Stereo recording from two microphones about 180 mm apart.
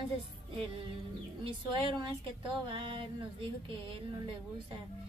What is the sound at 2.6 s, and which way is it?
Music, 30° right (ahead or behind).